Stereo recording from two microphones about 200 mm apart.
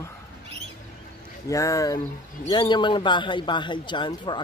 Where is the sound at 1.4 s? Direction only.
15° left (ahead or behind).